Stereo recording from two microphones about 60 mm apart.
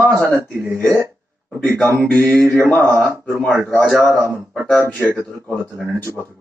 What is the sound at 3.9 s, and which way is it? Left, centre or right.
Speech, right.